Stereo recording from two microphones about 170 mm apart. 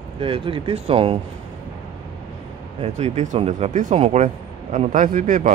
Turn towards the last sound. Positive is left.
turn(degrees=-50)  # may be behind; listen again after turning